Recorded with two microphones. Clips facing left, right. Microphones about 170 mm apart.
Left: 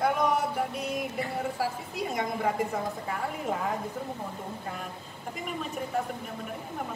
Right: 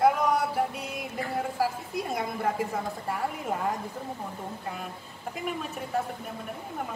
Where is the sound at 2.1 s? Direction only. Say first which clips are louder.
Left 2 dB; 5° right (ahead or behind).